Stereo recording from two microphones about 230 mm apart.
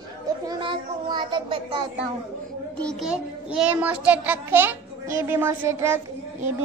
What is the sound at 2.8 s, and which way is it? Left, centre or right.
A child's voice, centre.